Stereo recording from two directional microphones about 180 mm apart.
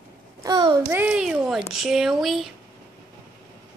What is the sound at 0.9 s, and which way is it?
Speech, 10° right (ahead or behind).